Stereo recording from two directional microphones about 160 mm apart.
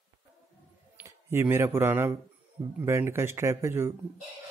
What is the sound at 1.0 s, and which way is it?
Speech, 15° right (ahead or behind).